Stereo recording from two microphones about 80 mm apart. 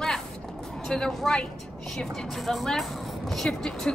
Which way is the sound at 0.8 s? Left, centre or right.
Centre.